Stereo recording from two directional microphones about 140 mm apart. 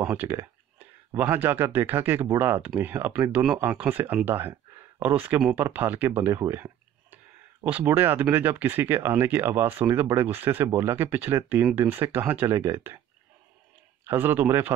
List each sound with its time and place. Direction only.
0.0 s speech: 10° right (ahead or behind)
14.0 s speech: 15° right (ahead or behind)